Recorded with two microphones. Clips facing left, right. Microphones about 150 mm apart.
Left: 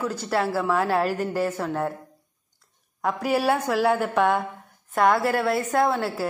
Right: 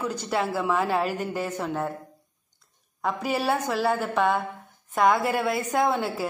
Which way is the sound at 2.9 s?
10° left (ahead or behind).